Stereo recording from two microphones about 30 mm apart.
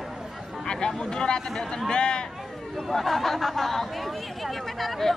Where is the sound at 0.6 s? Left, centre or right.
Left.